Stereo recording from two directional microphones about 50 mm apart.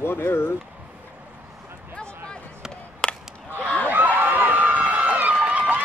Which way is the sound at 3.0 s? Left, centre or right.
Centre.